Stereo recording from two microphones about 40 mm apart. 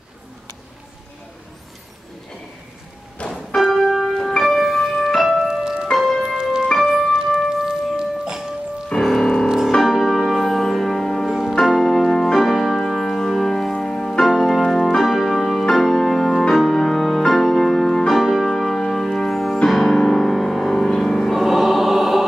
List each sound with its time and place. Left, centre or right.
3.2 s music: left
3.7 s music: centre
4.0 s music: left
4.4 s music: centre
5.5 s music: centre
5.9 s music: centre
6.4 s music: centre
6.7 s music: centre
7.4 s music: centre
9.0 s music: centre
11.2 s music: centre
14.2 s music: centre
21.4 s choir: centre